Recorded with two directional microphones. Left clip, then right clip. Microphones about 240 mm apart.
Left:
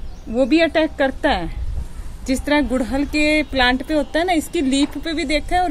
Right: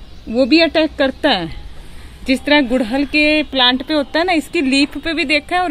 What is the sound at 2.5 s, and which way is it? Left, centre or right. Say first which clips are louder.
Speech: right 5 dB; right.